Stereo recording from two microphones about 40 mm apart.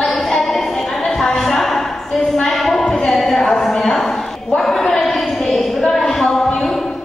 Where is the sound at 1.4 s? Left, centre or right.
Centre.